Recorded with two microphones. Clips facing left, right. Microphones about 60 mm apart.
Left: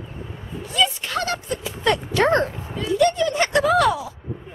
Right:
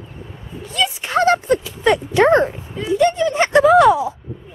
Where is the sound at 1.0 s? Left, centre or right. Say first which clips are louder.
Right 10 dB; right.